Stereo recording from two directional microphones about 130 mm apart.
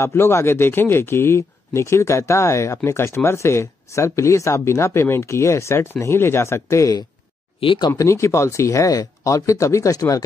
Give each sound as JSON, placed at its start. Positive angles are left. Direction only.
{"t": 0.0, "sound": "speech", "side_deg": 20}
{"t": 7.6, "sound": "speech", "side_deg": 40}
{"t": 7.9, "sound": "speech", "side_deg": 20}